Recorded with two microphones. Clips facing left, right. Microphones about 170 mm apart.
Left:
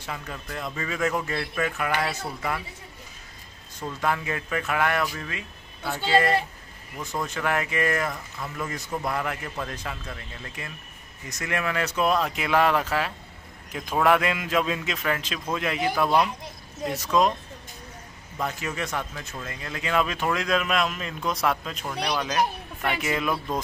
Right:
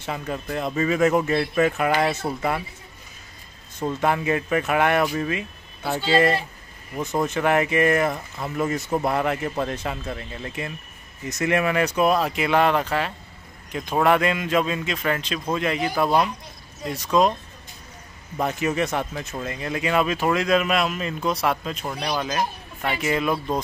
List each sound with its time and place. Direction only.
0.0 s speech: 25° right (ahead or behind)
4.0 s a man's voice: 20° right (ahead or behind); by 17.3 s centre (ahead or behind)
18.4 s a man's voice: 20° right (ahead or behind); by 23.6 s centre (ahead or behind)